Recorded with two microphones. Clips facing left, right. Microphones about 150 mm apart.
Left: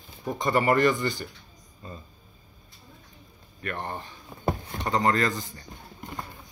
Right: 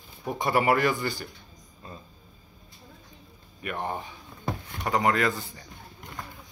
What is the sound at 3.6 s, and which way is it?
A man's voice, 10° right (ahead or behind).